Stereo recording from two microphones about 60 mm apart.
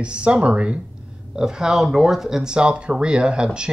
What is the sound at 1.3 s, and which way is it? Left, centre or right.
Speech, centre.